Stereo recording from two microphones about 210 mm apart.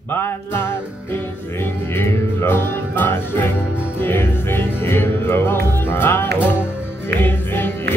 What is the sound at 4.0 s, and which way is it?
Music, 10° left (ahead or behind).